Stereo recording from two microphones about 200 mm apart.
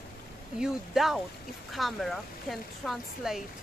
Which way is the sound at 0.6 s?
Centre (ahead or behind).